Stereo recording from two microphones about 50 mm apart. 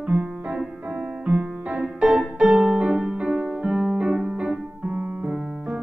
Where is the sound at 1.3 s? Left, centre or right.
Right.